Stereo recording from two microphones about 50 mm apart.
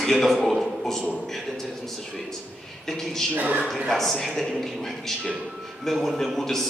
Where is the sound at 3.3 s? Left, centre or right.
Right.